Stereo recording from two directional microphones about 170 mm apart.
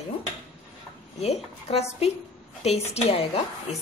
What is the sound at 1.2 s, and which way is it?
Speech, 40° left (ahead or behind).